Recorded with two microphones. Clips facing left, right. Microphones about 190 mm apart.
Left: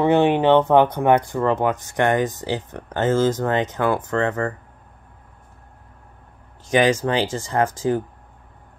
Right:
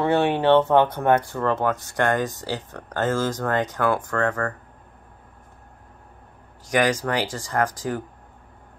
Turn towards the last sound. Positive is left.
turn(degrees=25)  # may be behind; listen again after turning